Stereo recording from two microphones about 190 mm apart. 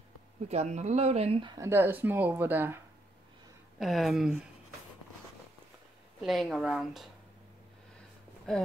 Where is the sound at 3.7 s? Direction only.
Centre (ahead or behind).